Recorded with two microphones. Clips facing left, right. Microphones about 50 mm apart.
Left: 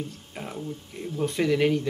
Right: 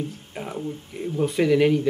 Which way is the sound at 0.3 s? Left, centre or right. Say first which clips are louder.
Right 4 dB; centre.